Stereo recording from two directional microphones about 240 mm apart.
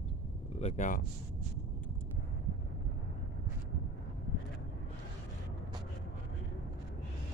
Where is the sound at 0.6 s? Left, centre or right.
Left.